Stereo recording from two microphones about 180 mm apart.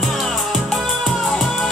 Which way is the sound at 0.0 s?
Centre (ahead or behind).